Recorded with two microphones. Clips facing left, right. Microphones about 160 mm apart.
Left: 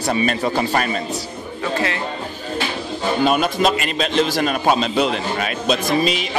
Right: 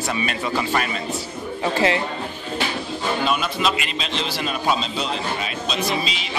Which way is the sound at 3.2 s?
45° left (ahead or behind).